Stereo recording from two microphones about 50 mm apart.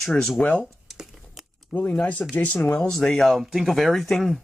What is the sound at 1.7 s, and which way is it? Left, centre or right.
Speech, left.